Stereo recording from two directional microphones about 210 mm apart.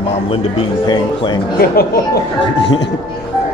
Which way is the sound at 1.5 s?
45° left (ahead or behind).